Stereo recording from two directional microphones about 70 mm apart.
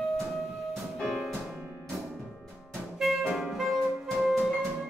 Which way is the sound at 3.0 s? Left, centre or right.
Centre.